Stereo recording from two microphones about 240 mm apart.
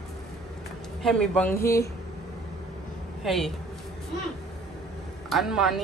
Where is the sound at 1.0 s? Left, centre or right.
Centre.